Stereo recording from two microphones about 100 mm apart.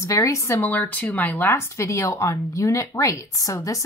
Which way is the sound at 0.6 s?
15° left (ahead or behind).